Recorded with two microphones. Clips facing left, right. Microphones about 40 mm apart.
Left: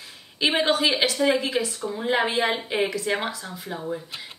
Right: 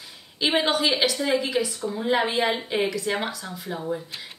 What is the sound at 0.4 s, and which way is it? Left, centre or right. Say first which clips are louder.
A woman's voice: left 1 dB; left.